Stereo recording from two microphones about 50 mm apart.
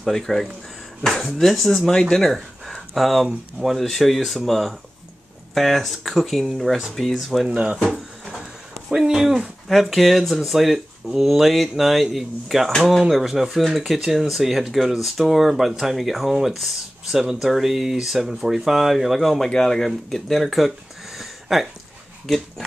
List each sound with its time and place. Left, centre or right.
0.0 s speech: centre
7.4 s speech: right
8.9 s speech: centre
21.2 s a sound: centre